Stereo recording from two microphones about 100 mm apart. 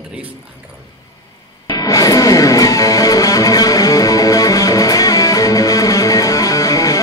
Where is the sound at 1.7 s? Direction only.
35° left (ahead or behind).